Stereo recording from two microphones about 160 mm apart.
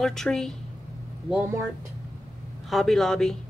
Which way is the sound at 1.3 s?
15° right (ahead or behind).